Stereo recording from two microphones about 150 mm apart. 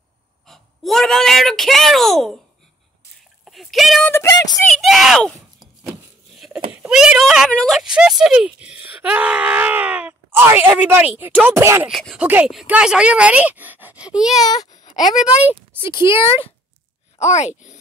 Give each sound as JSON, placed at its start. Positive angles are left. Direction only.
{"t": 0.5, "sound": "speech", "side_deg": 0}
{"t": 3.4, "sound": "speech", "side_deg": 0}
{"t": 4.0, "sound": "speech", "side_deg": 15}
{"t": 4.7, "sound": "speech", "side_deg": 0}
{"t": 6.3, "sound": "a sound", "side_deg": 0}
{"t": 6.7, "sound": "speech", "side_deg": -5}
{"t": 11.9, "sound": "speech", "side_deg": 0}
{"t": 14.4, "sound": "a child's voice", "side_deg": 25}
{"t": 15.0, "sound": "speech", "side_deg": -5}
{"t": 15.8, "sound": "speech", "side_deg": -20}
{"t": 16.1, "sound": "speech", "side_deg": 40}
{"t": 17.2, "sound": "speech", "side_deg": 50}